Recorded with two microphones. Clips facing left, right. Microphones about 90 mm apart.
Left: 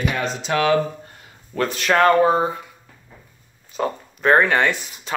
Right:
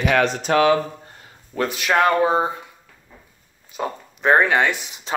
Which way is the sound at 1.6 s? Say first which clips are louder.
Left 1 dB; 10° right (ahead or behind).